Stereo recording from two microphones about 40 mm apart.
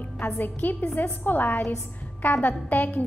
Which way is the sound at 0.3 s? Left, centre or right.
Left.